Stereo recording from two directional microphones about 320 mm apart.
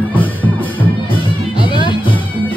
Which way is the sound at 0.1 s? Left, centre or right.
Centre.